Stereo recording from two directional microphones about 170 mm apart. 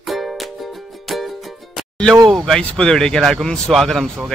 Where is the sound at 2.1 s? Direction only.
20° right (ahead or behind).